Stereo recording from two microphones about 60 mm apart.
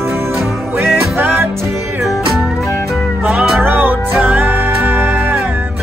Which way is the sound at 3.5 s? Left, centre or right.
Right.